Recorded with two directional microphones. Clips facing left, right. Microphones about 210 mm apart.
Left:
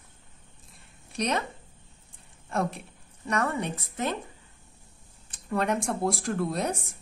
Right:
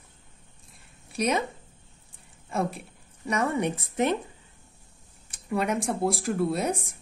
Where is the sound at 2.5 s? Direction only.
Centre (ahead or behind); by 4.2 s 20° right (ahead or behind).